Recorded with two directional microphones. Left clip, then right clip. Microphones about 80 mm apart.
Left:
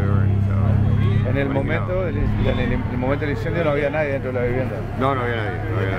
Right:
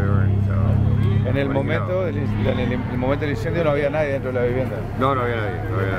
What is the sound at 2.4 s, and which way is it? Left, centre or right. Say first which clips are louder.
Speech: right 1 dB; right.